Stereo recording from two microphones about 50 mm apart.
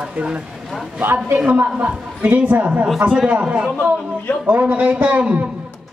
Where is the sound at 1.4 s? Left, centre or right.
Right.